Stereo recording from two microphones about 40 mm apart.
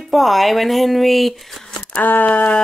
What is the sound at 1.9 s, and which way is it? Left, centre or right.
Speech, left.